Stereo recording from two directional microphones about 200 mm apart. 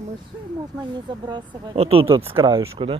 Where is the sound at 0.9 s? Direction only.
20° right (ahead or behind).